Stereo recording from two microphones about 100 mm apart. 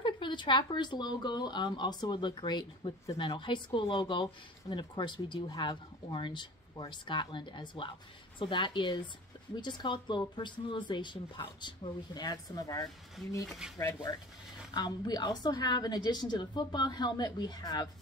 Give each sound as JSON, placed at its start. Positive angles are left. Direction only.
{"t": 0.0, "sound": "speech", "side_deg": 50}
{"t": 3.1, "sound": "speech", "side_deg": 60}
{"t": 13.5, "sound": "speech", "side_deg": -5}
{"t": 14.7, "sound": "speech", "side_deg": 40}